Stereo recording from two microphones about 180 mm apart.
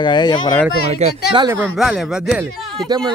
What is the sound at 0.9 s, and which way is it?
Speech, 35° right (ahead or behind).